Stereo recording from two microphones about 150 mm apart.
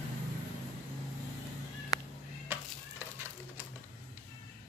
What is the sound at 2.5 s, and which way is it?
Stir, 15° right (ahead or behind).